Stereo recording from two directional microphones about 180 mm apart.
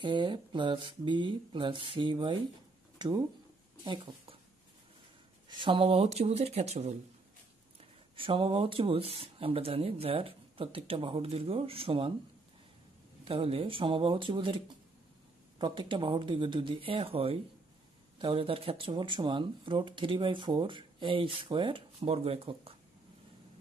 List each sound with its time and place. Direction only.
0.0 s speech: 25° right (ahead or behind)
5.5 s speech: 25° right (ahead or behind)
8.2 s speech: 30° right (ahead or behind)
13.2 s speech: 30° right (ahead or behind)
15.6 s speech: 25° right (ahead or behind)